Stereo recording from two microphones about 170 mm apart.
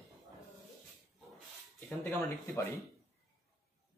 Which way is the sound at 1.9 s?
15° left (ahead or behind).